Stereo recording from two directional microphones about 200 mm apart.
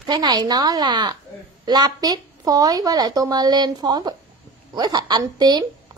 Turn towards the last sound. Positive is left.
turn(degrees=-20)  # may be behind; listen again after turning